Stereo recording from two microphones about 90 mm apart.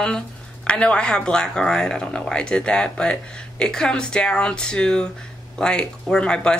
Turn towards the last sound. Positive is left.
turn(degrees=10)  # may be behind; listen again after turning